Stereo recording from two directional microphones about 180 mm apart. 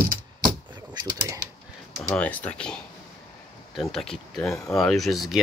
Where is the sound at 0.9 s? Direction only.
20° right (ahead or behind).